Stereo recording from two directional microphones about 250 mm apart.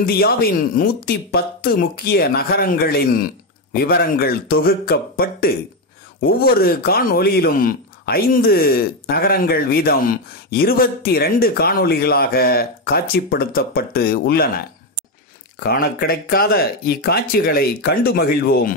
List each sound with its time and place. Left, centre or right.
0.0 s speech: left
6.6 s speech: left
15.6 s speech: left